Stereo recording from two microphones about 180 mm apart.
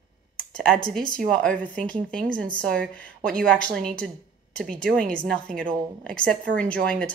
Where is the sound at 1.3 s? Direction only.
5° left (ahead or behind).